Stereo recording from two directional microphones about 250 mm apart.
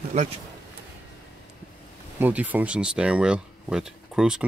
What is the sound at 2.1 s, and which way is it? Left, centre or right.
Speech, centre.